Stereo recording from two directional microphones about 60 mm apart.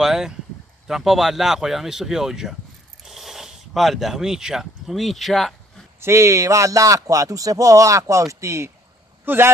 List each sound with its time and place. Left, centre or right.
0.0 s speech: centre
3.0 s a sound: centre
5.9 s speech: right
9.2 s speech: right